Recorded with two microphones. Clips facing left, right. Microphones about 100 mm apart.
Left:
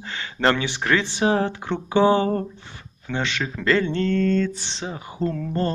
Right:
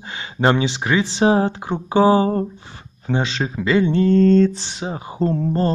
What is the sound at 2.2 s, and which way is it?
Speech, 35° right (ahead or behind).